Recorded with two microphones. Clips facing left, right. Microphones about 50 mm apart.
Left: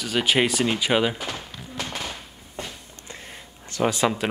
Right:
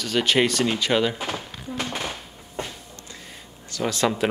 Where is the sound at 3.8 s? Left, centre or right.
Centre.